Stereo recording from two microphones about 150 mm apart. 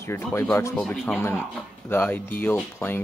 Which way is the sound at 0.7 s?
Centre (ahead or behind).